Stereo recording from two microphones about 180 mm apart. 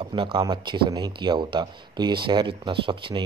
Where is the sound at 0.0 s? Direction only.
30° right (ahead or behind).